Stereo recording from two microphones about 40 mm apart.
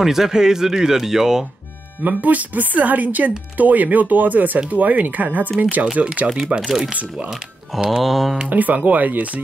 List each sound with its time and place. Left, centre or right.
0.0 s speech: centre
2.0 s speech: right
6.2 s speech: centre
6.9 s speech: right
7.9 s mantra: centre
8.5 s speech: right